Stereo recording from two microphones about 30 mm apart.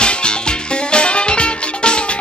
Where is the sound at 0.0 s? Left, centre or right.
Left.